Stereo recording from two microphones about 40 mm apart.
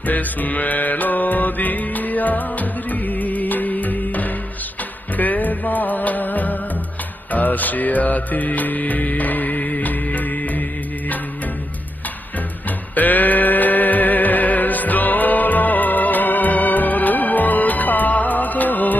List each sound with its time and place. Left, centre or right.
0.0 s music: left
12.9 s music: left